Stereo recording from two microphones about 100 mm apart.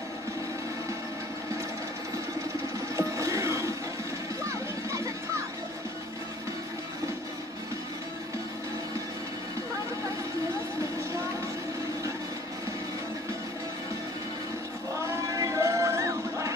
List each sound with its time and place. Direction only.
3.0 s music: 30° right (ahead or behind)
15.2 s music: 35° right (ahead or behind)